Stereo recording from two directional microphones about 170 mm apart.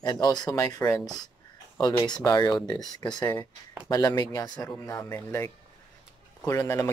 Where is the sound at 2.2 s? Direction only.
25° left (ahead or behind).